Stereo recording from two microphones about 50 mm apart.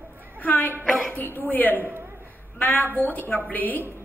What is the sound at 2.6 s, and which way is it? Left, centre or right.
Speech, left.